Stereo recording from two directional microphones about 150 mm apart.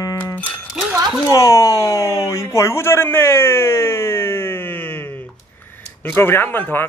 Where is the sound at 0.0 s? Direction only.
20° left (ahead or behind).